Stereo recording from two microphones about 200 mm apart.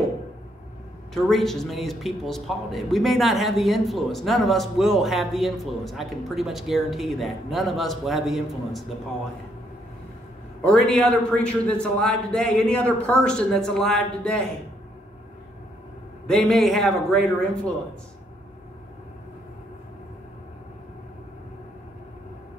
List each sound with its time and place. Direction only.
1.1 s a man's voice: centre (ahead or behind)
10.6 s a man's voice: 5° left (ahead or behind)
16.3 s a man's voice: centre (ahead or behind)